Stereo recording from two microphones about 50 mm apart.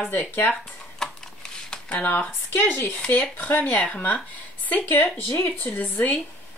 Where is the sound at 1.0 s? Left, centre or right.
Centre.